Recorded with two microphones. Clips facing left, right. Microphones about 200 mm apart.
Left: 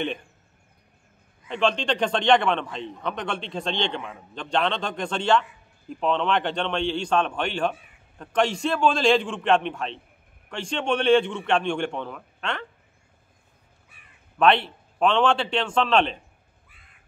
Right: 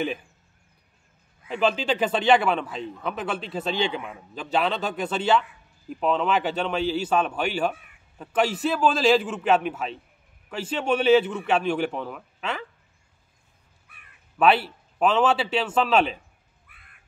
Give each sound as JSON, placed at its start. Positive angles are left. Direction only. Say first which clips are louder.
{"t": 0.0, "sound": "a man's voice", "louder": "right 1 dB", "side_deg": -5}
{"t": 1.5, "sound": "a man's voice", "louder": "even", "side_deg": -5}
{"t": 14.4, "sound": "a man's voice", "louder": "even", "side_deg": -5}
{"t": 16.6, "sound": "crow", "louder": "even", "side_deg": -60}